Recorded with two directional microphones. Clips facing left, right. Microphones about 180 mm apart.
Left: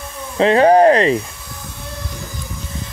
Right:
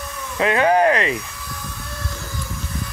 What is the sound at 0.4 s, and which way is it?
Speech, 30° left (ahead or behind).